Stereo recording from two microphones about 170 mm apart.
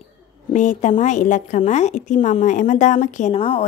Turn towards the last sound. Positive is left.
turn(degrees=40)  # may be behind; listen again after turning